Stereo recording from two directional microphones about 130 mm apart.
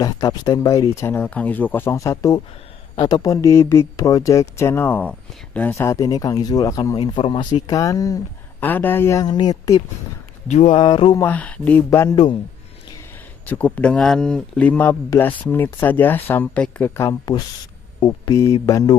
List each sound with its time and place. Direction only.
0.0 s speech: 30° left (ahead or behind)
1.2 s speech: 10° left (ahead or behind)
1.9 s speech: 25° left (ahead or behind)
5.9 s speech: 25° left (ahead or behind)
7.0 s speech: 40° left (ahead or behind)
8.5 s speech: 15° left (ahead or behind)
9.2 s speech: 30° left (ahead or behind)
10.7 s mantra: 40° left (ahead or behind)
11.2 s speech: 10° left (ahead or behind)
13.5 s speech: 10° left (ahead or behind)
18.0 s speech: 35° left (ahead or behind)
18.4 s speech: 25° left (ahead or behind)